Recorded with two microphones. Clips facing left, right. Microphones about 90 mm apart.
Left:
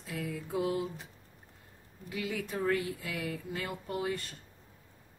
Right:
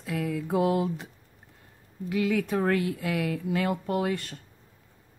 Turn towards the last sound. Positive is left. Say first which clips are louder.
# right 7 dB
turn(degrees=-70)  # may be behind; listen again after turning